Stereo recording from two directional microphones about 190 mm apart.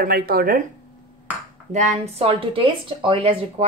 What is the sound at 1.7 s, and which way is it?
Speech, 40° right (ahead or behind).